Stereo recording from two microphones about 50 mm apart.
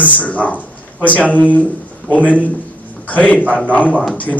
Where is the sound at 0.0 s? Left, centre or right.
Left.